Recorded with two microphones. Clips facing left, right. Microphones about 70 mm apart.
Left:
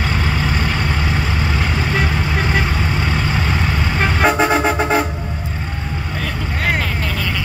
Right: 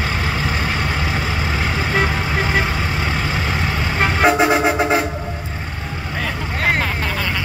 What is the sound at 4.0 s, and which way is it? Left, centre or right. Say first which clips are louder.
Vehicle: right 1 dB; centre.